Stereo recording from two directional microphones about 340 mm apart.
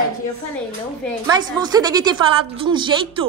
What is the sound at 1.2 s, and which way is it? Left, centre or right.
A woman's voice, centre.